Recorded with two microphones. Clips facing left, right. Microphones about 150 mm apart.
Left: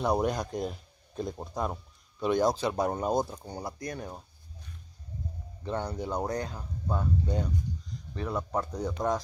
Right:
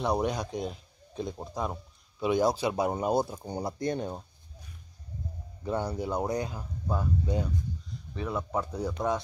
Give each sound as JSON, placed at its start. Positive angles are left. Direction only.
{"t": 0.0, "sound": "speech", "side_deg": 0}
{"t": 3.4, "sound": "speech", "side_deg": -20}
{"t": 5.7, "sound": "speech", "side_deg": -10}